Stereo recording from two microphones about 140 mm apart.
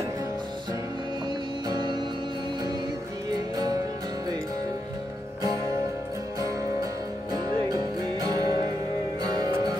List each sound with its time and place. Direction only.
1.7 s music: 35° right (ahead or behind)
3.5 s music: 30° right (ahead or behind)
7.3 s music: 30° right (ahead or behind)